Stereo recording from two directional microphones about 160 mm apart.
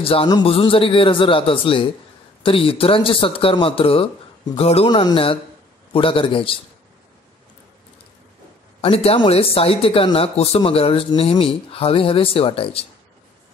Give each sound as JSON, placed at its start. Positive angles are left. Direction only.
{"t": 0.0, "sound": "speech", "side_deg": 35}
{"t": 4.8, "sound": "speech", "side_deg": 30}
{"t": 8.8, "sound": "speech", "side_deg": 35}